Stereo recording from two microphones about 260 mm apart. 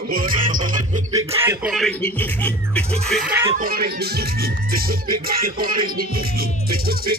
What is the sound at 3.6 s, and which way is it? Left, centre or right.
Music, right.